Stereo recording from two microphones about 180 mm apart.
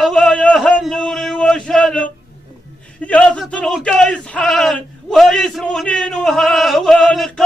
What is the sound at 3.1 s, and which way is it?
Speech, 5° left (ahead or behind).